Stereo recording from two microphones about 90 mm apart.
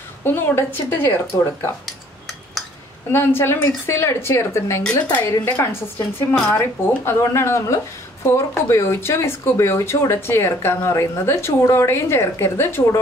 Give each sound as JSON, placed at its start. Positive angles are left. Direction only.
{"t": 0.2, "sound": "speech", "side_deg": 25}
{"t": 3.1, "sound": "speech", "side_deg": 25}
{"t": 4.8, "sound": "a woman's voice", "side_deg": 15}